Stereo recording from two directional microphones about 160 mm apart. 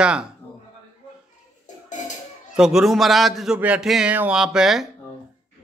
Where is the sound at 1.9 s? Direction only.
50° left (ahead or behind).